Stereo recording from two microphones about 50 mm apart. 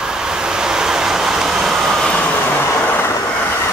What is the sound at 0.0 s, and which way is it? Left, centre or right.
Vehicle, centre.